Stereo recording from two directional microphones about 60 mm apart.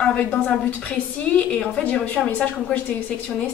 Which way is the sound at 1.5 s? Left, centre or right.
Left.